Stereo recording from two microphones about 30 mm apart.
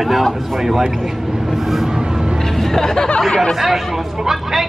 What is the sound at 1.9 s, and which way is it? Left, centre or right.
Vehicle, right.